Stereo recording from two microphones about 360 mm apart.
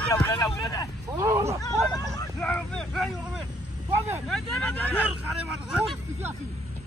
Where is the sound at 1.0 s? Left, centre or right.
Centre.